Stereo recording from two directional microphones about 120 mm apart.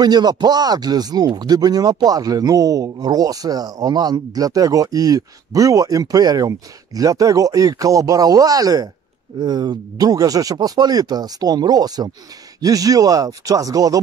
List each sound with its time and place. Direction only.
0.0 s speech: 35° right (ahead or behind)